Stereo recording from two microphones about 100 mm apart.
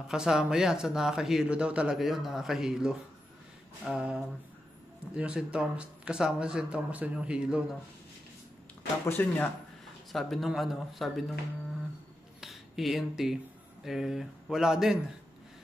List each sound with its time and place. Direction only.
0.1 s speech: 5° right (ahead or behind)
9.0 s speech: 20° left (ahead or behind)
10.1 s speech: centre (ahead or behind)
12.4 s a sound: centre (ahead or behind)
13.8 s speech: 5° right (ahead or behind)